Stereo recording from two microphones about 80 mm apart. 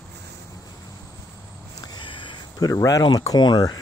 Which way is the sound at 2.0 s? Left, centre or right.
Left.